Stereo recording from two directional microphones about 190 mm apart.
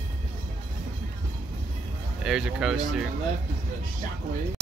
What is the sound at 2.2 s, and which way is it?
Speech, 5° right (ahead or behind).